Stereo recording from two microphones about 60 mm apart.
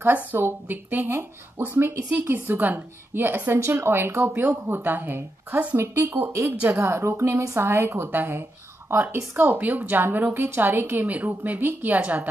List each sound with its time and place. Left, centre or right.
0.0 s a woman's voice: right
6.8 s a woman's voice: right
11.1 s speech: right